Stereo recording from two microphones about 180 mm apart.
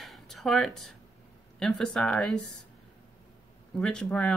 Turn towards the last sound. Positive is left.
turn(degrees=5)  # may be behind; listen again after turning